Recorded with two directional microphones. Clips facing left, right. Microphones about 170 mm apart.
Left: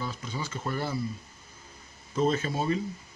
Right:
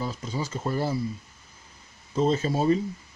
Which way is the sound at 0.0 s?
40° right (ahead or behind).